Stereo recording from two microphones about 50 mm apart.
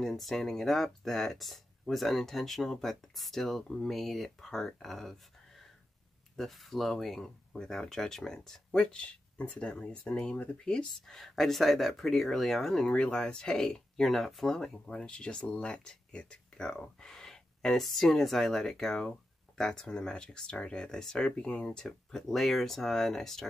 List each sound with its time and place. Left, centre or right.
0.0 s speech: centre
6.3 s speech: centre
8.7 s speech: left
12.8 s speech: left
21.7 s speech: centre